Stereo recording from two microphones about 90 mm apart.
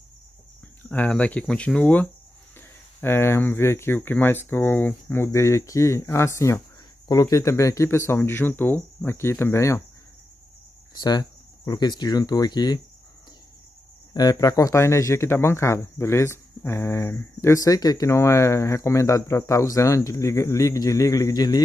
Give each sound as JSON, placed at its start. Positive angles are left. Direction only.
{"t": 0.8, "sound": "speech", "side_deg": 15}
{"t": 3.0, "sound": "speech", "side_deg": 25}
{"t": 11.0, "sound": "speech", "side_deg": 50}
{"t": 14.1, "sound": "speech", "side_deg": 50}